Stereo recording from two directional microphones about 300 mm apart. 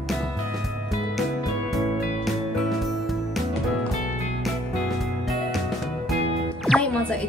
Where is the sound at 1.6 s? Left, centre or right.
Centre.